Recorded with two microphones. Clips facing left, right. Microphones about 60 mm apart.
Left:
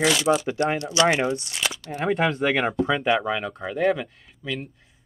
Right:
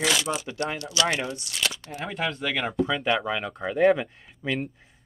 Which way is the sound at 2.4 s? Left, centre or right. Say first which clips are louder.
Left 5 dB; left.